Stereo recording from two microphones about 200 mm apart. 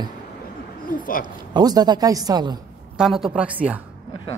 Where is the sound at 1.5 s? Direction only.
20° right (ahead or behind).